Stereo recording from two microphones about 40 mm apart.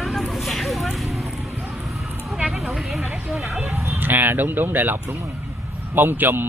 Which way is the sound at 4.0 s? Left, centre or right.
Right.